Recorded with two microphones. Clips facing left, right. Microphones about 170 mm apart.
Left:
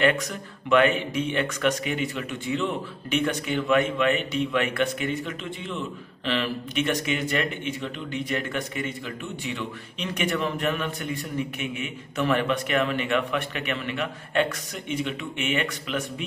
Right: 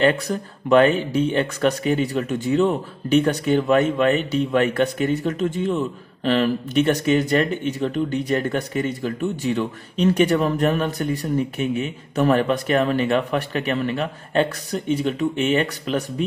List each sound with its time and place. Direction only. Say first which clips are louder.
0.0 s speech: right 4 dB; 35° right (ahead or behind)